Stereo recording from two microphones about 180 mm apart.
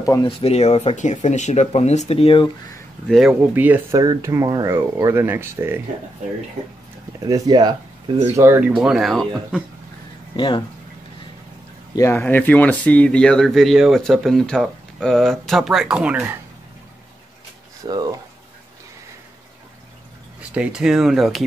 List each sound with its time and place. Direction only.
0.0 s speech: 20° left (ahead or behind)
0.4 s speech: 35° left (ahead or behind)
3.1 s speech: centre (ahead or behind)
7.2 s speech: 20° right (ahead or behind)
8.4 s speech: 10° right (ahead or behind)
10.3 s speech: 25° left (ahead or behind)
11.9 s speech: 15° left (ahead or behind); by 16.3 s 10° right (ahead or behind)
17.8 s speech: 20° right (ahead or behind)
20.5 s speech: 5° right (ahead or behind)